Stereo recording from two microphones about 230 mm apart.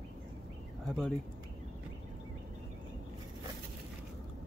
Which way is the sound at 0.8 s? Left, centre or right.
Centre.